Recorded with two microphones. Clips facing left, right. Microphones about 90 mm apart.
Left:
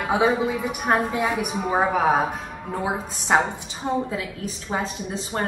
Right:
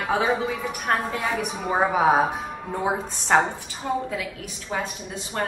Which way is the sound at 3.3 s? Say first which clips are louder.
Even; 5° left (ahead or behind).